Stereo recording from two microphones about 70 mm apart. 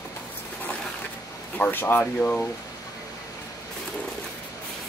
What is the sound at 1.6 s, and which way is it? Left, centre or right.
Speech, left.